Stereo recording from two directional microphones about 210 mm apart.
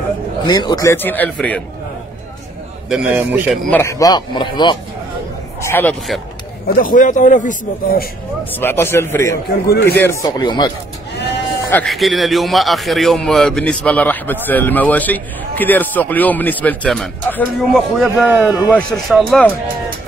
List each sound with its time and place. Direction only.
0.5 s a man's voice: 20° left (ahead or behind)
2.9 s speech: 5° right (ahead or behind)
3.7 s a man's voice: 15° left (ahead or behind)
5.6 s a man's voice: 10° left (ahead or behind)
6.7 s a man's voice: 40° left (ahead or behind)
8.5 s a man's voice: 10° left (ahead or behind)
9.7 s a man's voice: 50° left (ahead or behind)
10.0 s speech: 15° left (ahead or behind)
11.1 s sheep: 55° left (ahead or behind)
11.7 s speech: centre (ahead or behind)
18.7 s speech: 5° left (ahead or behind)